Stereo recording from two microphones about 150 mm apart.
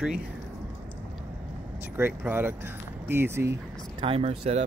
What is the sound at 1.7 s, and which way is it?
Speech, 15° right (ahead or behind).